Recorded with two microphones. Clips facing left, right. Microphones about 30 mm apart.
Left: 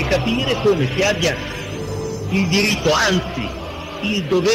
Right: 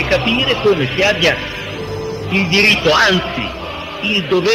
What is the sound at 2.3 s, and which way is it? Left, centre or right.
A man's voice, right.